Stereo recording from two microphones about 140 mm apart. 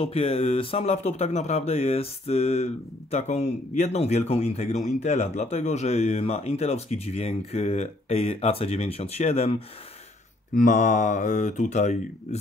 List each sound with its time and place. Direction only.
0.0 s speech: 45° left (ahead or behind)
10.5 s speech: 65° left (ahead or behind)